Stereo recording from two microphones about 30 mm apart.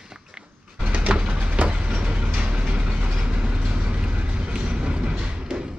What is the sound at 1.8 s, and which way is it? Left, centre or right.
Vehicle, right.